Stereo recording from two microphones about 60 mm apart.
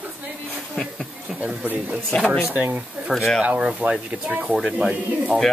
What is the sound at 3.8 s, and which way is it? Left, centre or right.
Speech, right.